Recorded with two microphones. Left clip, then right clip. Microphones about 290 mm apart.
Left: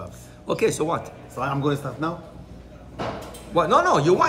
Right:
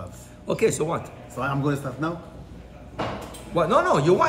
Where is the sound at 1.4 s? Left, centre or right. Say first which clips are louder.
Left 1 dB; left.